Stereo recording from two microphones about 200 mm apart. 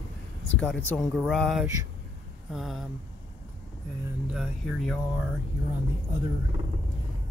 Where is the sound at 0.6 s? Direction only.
5° left (ahead or behind).